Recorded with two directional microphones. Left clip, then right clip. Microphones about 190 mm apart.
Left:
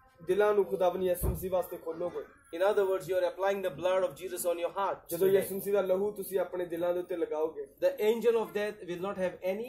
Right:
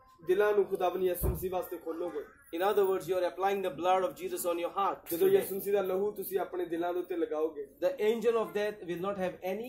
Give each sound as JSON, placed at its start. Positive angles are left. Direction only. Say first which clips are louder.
{"t": 0.3, "sound": "a man's voice", "louder": "even", "side_deg": 0}